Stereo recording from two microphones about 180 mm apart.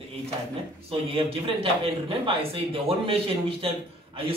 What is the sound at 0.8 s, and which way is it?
A man's voice, 30° right (ahead or behind).